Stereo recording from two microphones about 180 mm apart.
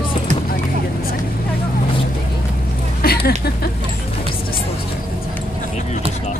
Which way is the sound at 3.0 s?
60° left (ahead or behind).